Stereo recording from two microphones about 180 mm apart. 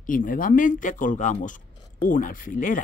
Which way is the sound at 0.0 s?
50° left (ahead or behind).